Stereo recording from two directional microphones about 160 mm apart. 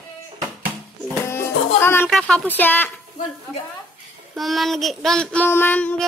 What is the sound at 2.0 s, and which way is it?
Speech, centre (ahead or behind).